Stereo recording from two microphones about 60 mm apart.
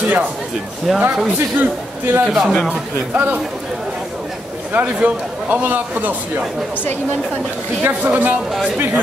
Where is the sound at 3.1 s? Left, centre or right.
Right.